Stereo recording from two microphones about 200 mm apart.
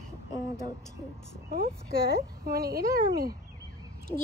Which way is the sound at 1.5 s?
50° right (ahead or behind).